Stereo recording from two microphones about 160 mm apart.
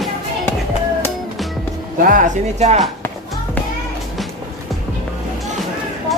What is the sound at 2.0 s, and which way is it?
Speech, 55° right (ahead or behind).